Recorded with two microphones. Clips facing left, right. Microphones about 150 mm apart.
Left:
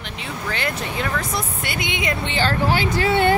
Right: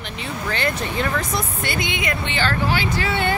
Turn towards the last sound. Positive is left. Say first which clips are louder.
# left 5 dB
turn(degrees=50)  # may be behind; listen again after turning